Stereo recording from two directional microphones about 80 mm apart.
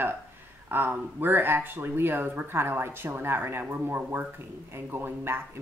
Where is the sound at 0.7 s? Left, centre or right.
Right.